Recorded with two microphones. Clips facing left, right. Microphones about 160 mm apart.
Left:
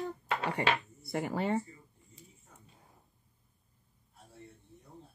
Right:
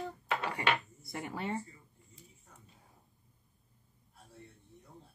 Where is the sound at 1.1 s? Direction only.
65° left (ahead or behind).